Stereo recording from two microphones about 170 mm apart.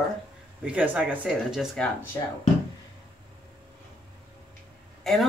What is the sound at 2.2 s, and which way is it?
Speech, 15° left (ahead or behind).